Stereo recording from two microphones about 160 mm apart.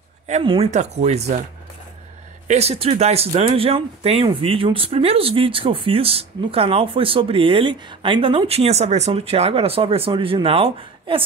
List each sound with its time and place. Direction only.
0.4 s speech: 30° right (ahead or behind)
0.7 s speech: 45° right (ahead or behind)
2.4 s speech: 40° right (ahead or behind)